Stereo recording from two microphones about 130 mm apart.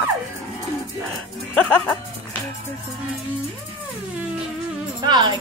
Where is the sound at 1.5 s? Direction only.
5° left (ahead or behind).